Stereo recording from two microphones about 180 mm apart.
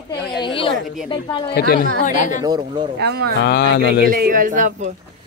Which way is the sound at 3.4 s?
65° left (ahead or behind).